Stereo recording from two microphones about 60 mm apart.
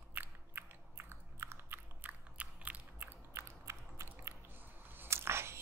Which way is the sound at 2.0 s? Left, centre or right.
Right.